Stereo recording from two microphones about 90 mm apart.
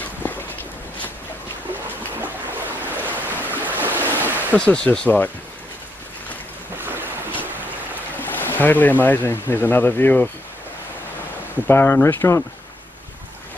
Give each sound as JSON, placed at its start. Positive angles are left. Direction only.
{"t": 0.0, "sound": "a sound", "side_deg": 20}
{"t": 2.8, "sound": "waves", "side_deg": -20}
{"t": 4.6, "sound": "speech", "side_deg": 15}
{"t": 6.8, "sound": "boat", "side_deg": -20}
{"t": 8.2, "sound": "speech", "side_deg": 20}
{"t": 11.6, "sound": "speech", "side_deg": 25}